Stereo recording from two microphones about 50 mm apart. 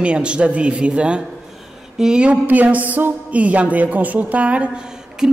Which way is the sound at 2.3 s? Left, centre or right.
Right.